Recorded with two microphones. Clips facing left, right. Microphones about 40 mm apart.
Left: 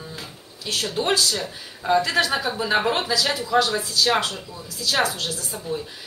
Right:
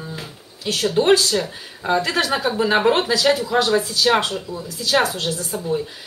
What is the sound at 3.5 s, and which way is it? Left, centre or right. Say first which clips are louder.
Speech: right 3 dB; right.